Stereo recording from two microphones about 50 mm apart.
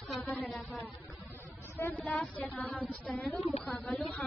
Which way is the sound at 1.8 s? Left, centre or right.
Left.